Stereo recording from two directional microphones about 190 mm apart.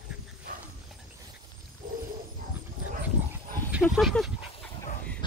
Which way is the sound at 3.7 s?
Centre (ahead or behind).